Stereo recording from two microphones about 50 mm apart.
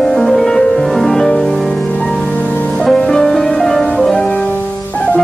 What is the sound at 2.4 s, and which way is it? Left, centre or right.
Music, left.